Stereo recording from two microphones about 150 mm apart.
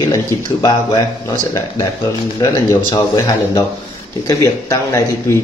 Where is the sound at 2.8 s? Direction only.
25° left (ahead or behind).